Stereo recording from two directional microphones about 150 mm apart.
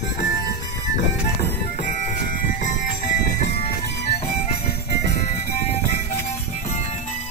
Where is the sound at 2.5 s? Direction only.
60° left (ahead or behind).